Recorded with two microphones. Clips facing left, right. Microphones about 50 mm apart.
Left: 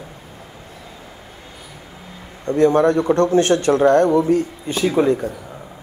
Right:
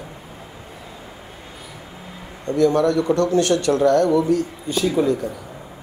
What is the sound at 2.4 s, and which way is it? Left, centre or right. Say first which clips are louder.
A man's voice: left 3 dB; left.